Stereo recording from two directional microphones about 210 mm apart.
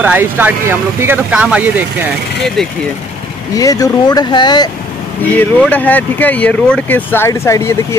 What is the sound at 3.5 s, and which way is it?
Speech, 15° left (ahead or behind).